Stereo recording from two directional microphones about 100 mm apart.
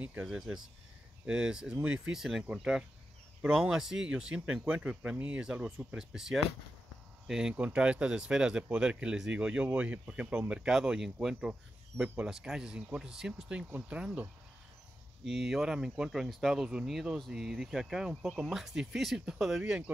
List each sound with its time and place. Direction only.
0.0 s speech: 10° right (ahead or behind)